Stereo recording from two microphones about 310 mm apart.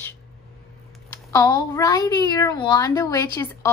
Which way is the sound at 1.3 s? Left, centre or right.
Centre.